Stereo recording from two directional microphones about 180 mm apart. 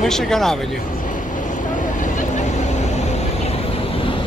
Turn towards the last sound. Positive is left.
turn(degrees=40)  # may be behind; listen again after turning